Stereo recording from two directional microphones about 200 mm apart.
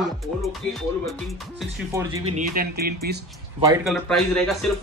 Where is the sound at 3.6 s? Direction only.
20° right (ahead or behind).